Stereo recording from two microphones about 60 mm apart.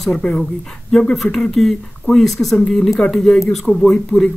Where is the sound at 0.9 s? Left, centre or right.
Centre.